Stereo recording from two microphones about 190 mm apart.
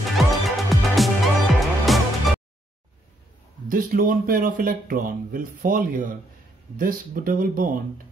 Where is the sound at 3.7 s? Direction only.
45° right (ahead or behind).